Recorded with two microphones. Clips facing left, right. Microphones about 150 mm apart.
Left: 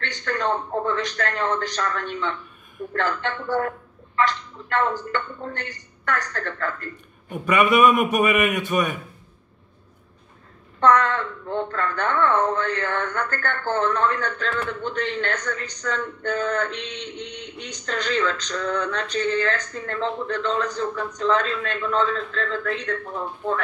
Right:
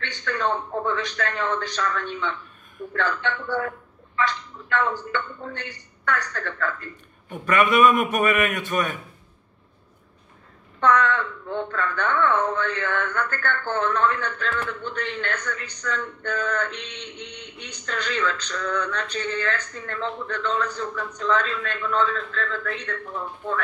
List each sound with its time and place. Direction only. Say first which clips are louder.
0.0 s a man's voice: left 1 dB; 40° left (ahead or behind)
4.8 s a man's voice: left 2 dB; 45° left (ahead or behind)
7.2 s a man's voice: left 1 dB; 10° left (ahead or behind)
10.9 s speech: left 1 dB; 40° left (ahead or behind)